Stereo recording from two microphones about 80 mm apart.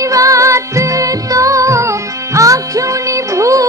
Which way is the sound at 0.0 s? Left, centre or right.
Right.